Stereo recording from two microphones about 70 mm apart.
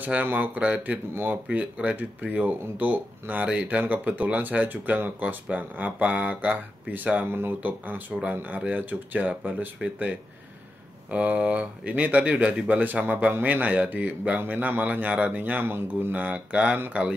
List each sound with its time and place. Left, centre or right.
0.0 s speech: right
11.1 s speech: centre